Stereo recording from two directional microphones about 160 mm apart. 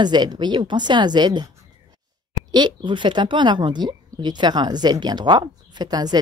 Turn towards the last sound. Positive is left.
turn(degrees=-25)  # may be behind; listen again after turning